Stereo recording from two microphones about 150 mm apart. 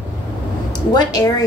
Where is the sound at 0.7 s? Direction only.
25° left (ahead or behind).